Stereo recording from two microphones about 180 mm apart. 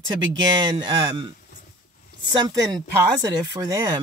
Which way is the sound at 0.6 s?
25° right (ahead or behind).